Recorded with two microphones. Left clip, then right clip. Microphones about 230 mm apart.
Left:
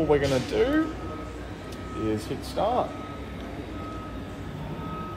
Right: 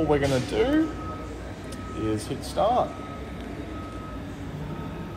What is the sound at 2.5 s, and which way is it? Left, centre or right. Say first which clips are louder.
Speech: right 3 dB; right.